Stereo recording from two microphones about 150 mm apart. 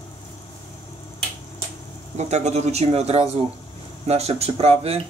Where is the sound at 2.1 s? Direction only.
50° right (ahead or behind).